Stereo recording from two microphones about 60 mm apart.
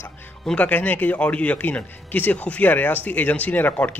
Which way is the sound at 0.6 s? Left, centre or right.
Left.